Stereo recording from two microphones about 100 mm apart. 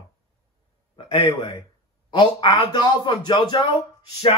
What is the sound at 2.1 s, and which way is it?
A man's voice, 60° left (ahead or behind).